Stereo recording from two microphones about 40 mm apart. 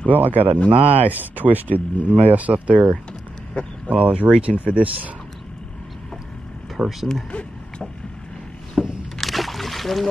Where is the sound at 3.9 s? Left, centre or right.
Right.